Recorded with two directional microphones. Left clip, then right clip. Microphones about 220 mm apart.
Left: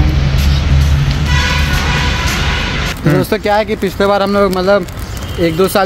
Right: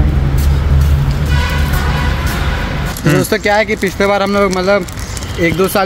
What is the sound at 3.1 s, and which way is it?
Speech, 5° left (ahead or behind).